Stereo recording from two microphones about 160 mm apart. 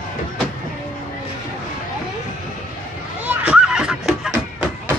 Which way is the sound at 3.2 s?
5° right (ahead or behind).